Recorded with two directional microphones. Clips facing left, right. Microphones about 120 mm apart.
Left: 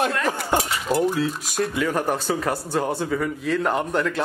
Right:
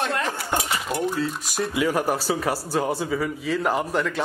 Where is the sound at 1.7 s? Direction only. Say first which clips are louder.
Right 3 dB; 10° right (ahead or behind).